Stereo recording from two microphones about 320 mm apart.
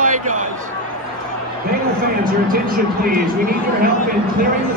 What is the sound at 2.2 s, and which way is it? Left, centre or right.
Speech, right.